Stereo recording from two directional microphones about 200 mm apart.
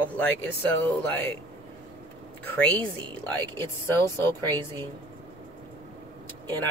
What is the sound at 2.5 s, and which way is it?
Speech, 5° left (ahead or behind).